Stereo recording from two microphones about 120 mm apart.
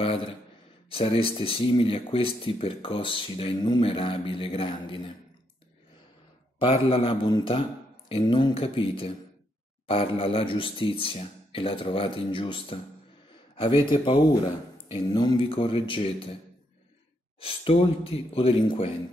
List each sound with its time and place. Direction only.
0.0 s a sound: 50° left (ahead or behind)
0.8 s speech: 50° left (ahead or behind)
3.5 s speech: 35° left (ahead or behind)
3.8 s speech: 45° left (ahead or behind)
6.6 s speech: 50° left (ahead or behind)
8.2 s speech: 40° left (ahead or behind)
17.4 s speech: 50° left (ahead or behind)